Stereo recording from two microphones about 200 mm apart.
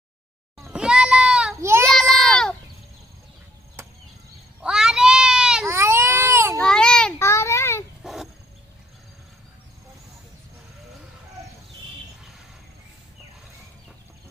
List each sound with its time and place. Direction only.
0.7 s children playing: 5° right (ahead or behind)
1.9 s a sound: centre (ahead or behind)
4.6 s goat: 5° right (ahead or behind)
5.7 s baby cry: 15° right (ahead or behind)
6.6 s child singing: 5° left (ahead or behind)
8.0 s wild animals: centre (ahead or behind)